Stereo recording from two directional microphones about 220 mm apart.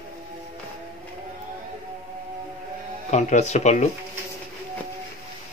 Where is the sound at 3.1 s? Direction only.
30° left (ahead or behind).